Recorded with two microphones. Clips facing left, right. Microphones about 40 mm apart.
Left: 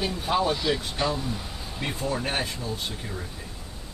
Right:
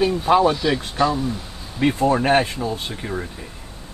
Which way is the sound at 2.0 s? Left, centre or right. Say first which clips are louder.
Right 11 dB; right.